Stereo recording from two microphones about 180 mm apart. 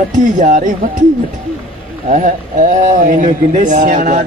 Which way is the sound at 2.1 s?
45° right (ahead or behind).